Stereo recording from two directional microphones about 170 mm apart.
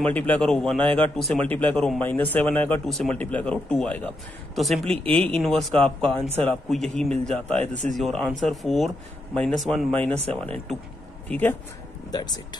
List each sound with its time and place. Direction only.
0.0 s speech: 10° left (ahead or behind)
12.1 s speech: 25° left (ahead or behind)